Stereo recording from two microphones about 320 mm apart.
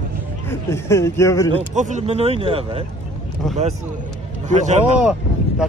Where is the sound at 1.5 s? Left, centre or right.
Right.